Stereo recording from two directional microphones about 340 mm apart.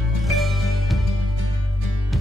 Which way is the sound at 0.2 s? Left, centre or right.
Centre.